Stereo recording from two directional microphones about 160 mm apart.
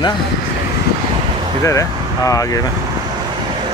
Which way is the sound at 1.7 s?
20° left (ahead or behind).